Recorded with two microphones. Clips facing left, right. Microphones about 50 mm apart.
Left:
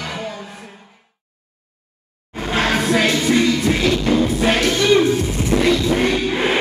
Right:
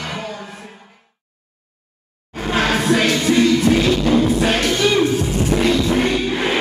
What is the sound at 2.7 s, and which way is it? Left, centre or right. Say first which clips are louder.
Music: even; centre.